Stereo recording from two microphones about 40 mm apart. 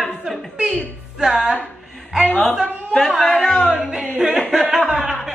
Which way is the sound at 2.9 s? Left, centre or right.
Centre.